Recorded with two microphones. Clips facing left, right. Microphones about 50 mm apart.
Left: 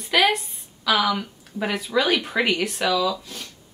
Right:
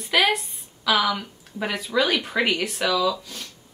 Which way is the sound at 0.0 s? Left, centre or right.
Centre.